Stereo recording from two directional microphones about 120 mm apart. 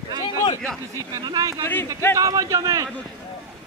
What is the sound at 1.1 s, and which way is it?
Speech, 35° right (ahead or behind).